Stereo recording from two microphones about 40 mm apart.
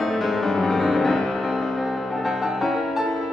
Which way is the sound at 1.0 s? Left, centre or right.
Centre.